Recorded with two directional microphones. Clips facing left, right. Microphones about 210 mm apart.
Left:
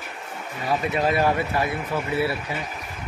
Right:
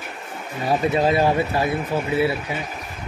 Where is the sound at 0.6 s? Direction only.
30° right (ahead or behind).